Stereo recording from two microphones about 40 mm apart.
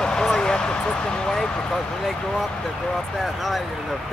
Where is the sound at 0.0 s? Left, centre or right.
Centre.